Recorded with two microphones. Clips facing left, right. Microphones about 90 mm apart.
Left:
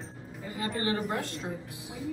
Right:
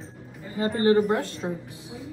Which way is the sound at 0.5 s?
35° right (ahead or behind).